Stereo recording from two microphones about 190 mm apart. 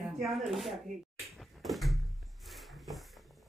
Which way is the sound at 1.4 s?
Centre (ahead or behind).